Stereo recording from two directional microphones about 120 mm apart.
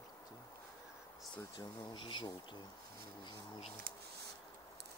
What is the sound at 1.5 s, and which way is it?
Speech, 40° left (ahead or behind).